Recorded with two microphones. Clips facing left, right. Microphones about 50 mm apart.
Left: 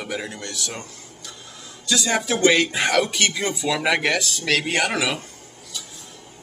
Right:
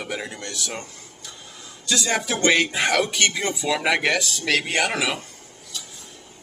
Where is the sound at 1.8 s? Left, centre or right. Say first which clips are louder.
Left 1 dB; centre.